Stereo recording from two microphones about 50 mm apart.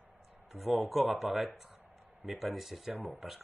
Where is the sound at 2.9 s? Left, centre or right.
Right.